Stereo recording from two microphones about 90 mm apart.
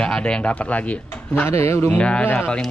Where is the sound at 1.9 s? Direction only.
15° left (ahead or behind).